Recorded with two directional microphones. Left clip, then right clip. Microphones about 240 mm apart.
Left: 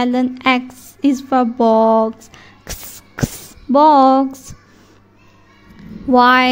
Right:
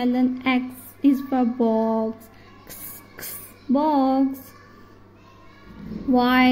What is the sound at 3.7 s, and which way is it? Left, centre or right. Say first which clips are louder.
Speech: left 11 dB; left.